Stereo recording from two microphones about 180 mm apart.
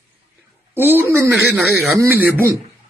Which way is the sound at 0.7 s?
10° right (ahead or behind).